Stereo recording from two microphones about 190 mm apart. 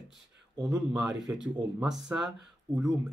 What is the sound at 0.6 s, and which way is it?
Speech, 5° right (ahead or behind).